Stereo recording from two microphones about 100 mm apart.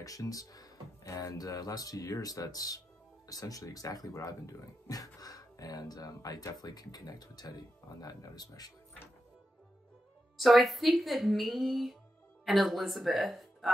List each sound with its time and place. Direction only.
0.0 s speech: 35° left (ahead or behind)
10.3 s speech: centre (ahead or behind)